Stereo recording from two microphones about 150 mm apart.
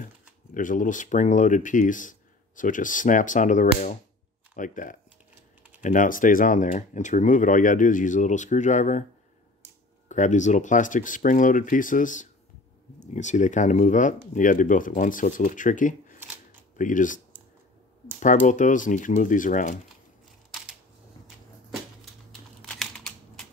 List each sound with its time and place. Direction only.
0.6 s speech: 60° left (ahead or behind)
10.0 s speech: 55° left (ahead or behind)
18.2 s speech: 55° left (ahead or behind)
22.7 s computer keyboard: 5° left (ahead or behind)